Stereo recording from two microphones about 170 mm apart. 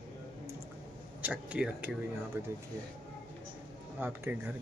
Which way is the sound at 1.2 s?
10° right (ahead or behind).